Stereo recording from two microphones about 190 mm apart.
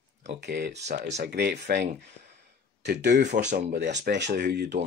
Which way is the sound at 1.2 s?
55° right (ahead or behind).